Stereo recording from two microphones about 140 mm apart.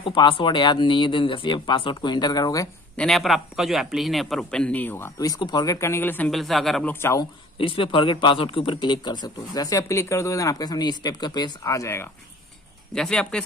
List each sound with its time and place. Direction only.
0.0 s a man's voice: 35° left (ahead or behind)
3.0 s a man's voice: centre (ahead or behind); by 5.3 s 15° left (ahead or behind)
5.3 s speech: 30° left (ahead or behind); by 6.3 s 15° left (ahead or behind)
6.3 s a man's voice: centre (ahead or behind)
6.9 s speech: 20° left (ahead or behind)
7.5 s a man's voice: 40° left (ahead or behind); by 12.1 s 20° left (ahead or behind)
12.9 s a man's voice: 5° left (ahead or behind)